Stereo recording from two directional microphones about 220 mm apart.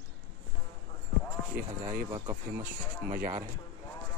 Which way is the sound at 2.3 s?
10° right (ahead or behind).